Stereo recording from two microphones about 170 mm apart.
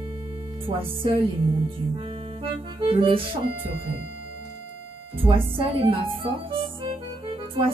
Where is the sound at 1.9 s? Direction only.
30° right (ahead or behind).